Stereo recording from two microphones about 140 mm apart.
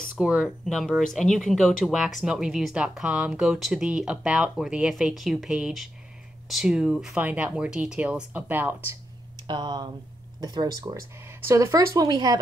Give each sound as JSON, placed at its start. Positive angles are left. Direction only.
{"t": 0.2, "sound": "speech", "side_deg": -5}
{"t": 9.5, "sound": "speech", "side_deg": -30}